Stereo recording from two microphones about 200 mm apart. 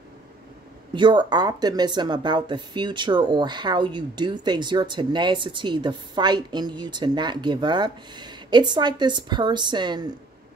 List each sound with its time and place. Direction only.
0.9 s speech: 25° right (ahead or behind)